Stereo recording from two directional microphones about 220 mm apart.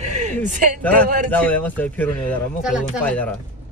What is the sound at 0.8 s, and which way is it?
Speech, 5° left (ahead or behind).